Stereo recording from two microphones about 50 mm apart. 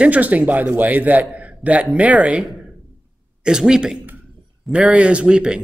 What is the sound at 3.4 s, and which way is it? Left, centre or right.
A man's voice, centre.